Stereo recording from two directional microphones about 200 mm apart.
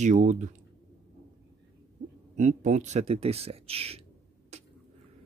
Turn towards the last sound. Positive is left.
turn(degrees=-35)  # may be behind; listen again after turning